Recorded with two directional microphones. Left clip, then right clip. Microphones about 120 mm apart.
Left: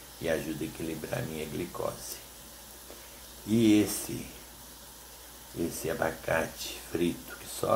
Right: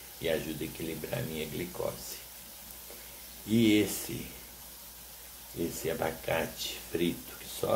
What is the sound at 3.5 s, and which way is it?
Speech, 5° right (ahead or behind).